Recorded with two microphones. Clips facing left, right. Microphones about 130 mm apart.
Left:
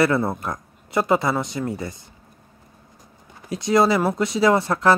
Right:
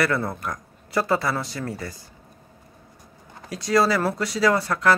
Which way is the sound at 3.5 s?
20° left (ahead or behind).